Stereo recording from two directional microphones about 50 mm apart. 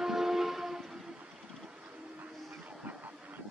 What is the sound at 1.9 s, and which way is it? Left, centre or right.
Vehicle, right.